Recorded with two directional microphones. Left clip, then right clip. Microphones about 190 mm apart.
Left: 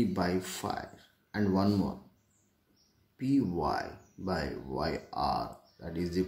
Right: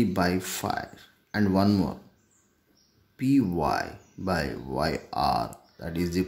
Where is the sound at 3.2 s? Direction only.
25° right (ahead or behind).